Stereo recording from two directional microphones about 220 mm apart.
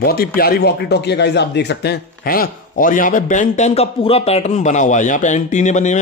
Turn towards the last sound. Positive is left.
turn(degrees=30)  # may be behind; listen again after turning